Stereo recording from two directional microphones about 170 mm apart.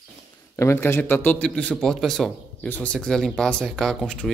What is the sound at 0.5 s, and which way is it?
Speech, 15° left (ahead or behind).